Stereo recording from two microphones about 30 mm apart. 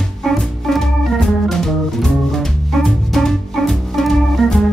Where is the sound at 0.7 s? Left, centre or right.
Centre.